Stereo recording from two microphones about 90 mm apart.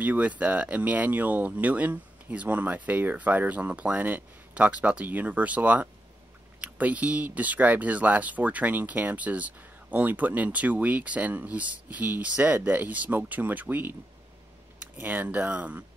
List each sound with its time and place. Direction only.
0.0 s speech: 20° right (ahead or behind)